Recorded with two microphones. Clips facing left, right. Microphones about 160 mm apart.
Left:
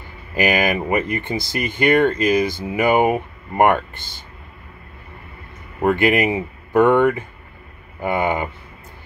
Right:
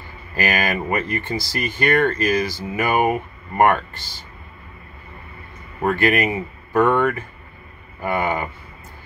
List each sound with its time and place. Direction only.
0.3 s speech: 20° left (ahead or behind)
5.8 s speech: 15° left (ahead or behind)